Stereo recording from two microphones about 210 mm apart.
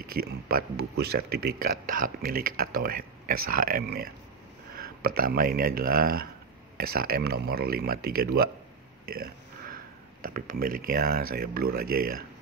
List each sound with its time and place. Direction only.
0.1 s speech: 45° right (ahead or behind)
9.0 s a sound: 45° right (ahead or behind)
10.2 s speech: 40° right (ahead or behind)